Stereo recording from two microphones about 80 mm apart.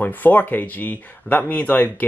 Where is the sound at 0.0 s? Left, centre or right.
Left.